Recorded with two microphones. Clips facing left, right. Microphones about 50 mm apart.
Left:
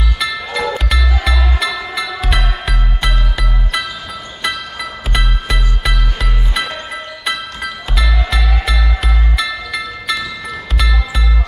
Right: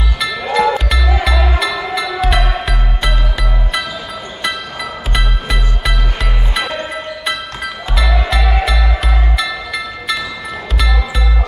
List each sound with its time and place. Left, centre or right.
0.2 s music: centre
5.1 s music: centre